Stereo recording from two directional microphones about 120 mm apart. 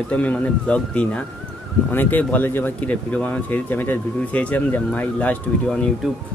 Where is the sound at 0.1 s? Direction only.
10° left (ahead or behind).